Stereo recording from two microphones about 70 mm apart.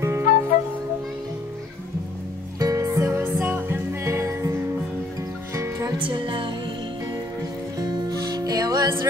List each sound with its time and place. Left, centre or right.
0.0 s music: right
2.6 s music: right
7.8 s music: right